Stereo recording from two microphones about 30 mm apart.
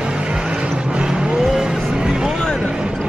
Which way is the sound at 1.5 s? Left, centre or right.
Right.